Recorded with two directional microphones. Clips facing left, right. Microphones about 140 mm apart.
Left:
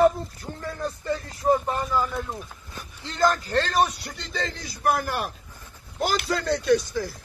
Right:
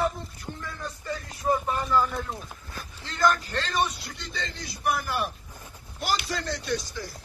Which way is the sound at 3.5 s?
55° left (ahead or behind).